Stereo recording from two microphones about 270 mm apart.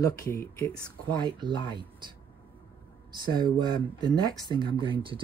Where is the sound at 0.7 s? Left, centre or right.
Centre.